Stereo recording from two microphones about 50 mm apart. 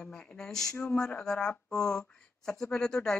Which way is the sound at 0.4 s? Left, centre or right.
Centre.